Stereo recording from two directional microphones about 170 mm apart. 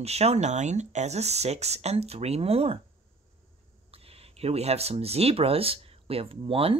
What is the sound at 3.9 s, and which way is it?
Speech, 35° right (ahead or behind).